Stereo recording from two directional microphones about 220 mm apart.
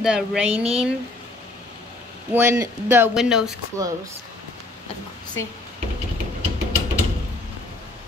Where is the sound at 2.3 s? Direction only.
10° right (ahead or behind).